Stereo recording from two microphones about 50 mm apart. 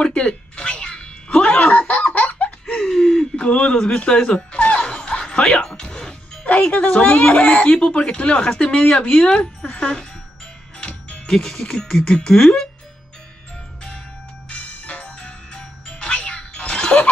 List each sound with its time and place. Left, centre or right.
0.0 s music: centre
2.7 s a sound: centre
3.4 s music: left
6.4 s speech: left; by 12.6 s centre
14.5 s music: left